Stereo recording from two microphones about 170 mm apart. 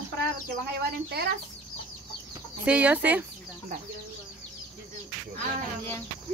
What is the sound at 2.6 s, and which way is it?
Speech, 10° right (ahead or behind).